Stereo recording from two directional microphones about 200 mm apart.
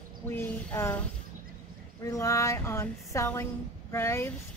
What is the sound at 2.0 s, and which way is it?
A woman's voice, 15° left (ahead or behind).